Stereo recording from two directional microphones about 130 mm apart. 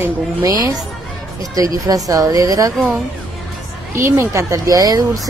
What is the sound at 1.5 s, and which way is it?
Speech, 25° right (ahead or behind).